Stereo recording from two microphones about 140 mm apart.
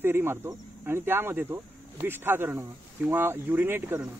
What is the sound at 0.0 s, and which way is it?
Speech, 15° right (ahead or behind).